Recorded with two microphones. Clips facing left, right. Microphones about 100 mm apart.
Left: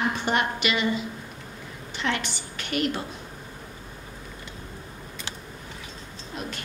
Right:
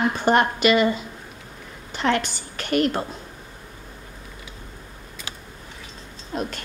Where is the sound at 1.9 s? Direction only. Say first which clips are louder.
Right 6 dB; 45° right (ahead or behind).